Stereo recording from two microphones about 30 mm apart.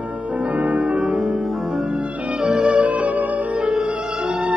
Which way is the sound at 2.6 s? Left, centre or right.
Right.